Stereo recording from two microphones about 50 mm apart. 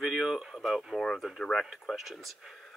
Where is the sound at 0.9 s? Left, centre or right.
Centre.